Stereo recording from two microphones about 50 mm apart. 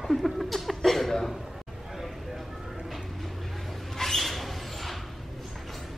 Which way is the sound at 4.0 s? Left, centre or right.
Centre.